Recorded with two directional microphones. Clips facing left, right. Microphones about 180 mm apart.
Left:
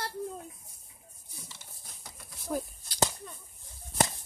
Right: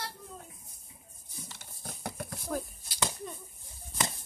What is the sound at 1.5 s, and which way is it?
Horse, 60° right (ahead or behind).